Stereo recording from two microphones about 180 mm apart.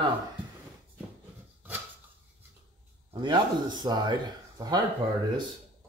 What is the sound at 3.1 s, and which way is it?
Speech, 25° right (ahead or behind).